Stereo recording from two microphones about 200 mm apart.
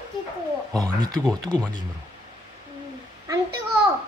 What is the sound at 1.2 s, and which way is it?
Speech, 5° left (ahead or behind).